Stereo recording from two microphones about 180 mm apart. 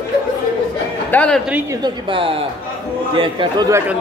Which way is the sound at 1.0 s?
5° left (ahead or behind).